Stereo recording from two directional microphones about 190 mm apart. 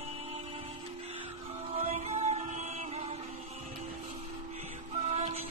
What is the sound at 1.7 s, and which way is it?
Music, 35° right (ahead or behind).